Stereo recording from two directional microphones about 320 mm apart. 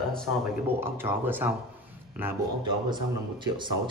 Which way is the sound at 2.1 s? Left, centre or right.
Centre.